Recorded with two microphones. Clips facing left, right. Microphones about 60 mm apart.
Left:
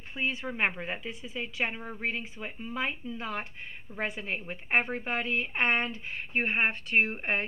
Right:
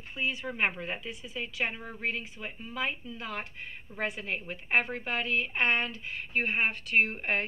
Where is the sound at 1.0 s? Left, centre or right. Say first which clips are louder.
Left 1 dB; left.